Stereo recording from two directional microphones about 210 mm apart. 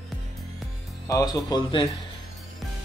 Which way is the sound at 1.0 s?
15° left (ahead or behind).